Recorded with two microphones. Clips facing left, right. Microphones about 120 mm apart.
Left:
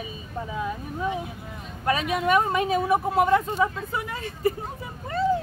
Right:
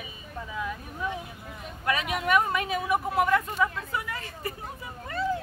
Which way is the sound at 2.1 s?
25° left (ahead or behind).